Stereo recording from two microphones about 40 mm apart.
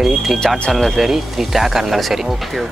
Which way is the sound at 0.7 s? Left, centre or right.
Centre.